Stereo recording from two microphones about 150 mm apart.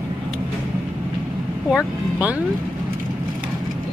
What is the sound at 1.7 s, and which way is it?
Speech, 5° right (ahead or behind).